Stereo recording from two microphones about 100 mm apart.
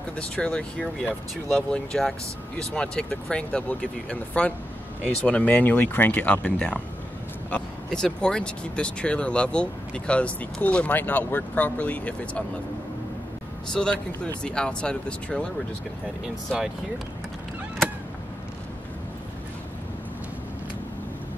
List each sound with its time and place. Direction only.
0.2 s speech: 10° left (ahead or behind)
13.7 s speech: 10° left (ahead or behind)